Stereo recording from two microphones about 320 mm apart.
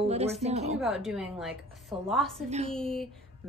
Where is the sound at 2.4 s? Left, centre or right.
Right.